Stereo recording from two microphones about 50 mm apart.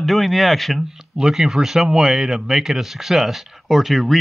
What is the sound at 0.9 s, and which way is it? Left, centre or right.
A man's voice, centre.